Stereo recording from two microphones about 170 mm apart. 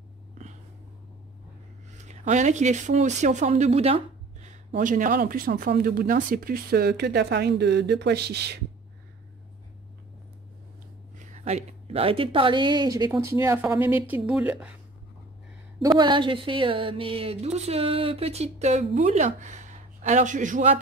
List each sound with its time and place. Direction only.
1.9 s speech: 45° right (ahead or behind); by 8.5 s 75° right (ahead or behind)
11.1 s a woman's voice: 40° right (ahead or behind); by 14.7 s 10° right (ahead or behind)
16.0 s speech: 30° right (ahead or behind); by 20.8 s 50° right (ahead or behind)